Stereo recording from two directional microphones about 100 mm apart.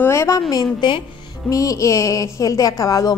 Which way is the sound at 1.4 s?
35° left (ahead or behind).